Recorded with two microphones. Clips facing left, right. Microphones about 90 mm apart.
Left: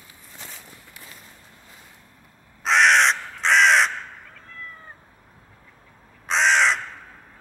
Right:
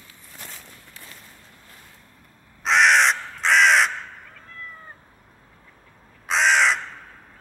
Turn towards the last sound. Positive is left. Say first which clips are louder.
# even
turn(degrees=0)  # may be behind; listen again after turning